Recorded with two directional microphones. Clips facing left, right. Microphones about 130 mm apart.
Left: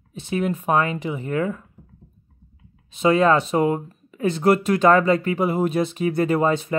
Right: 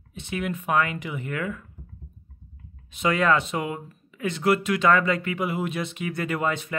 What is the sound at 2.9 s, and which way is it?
Speech, 30° left (ahead or behind).